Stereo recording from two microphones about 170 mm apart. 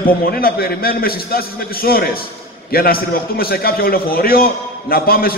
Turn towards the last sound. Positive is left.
turn(degrees=60)  # may be behind; listen again after turning